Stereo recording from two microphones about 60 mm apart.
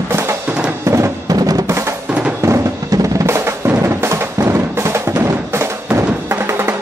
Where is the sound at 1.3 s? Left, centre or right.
Right.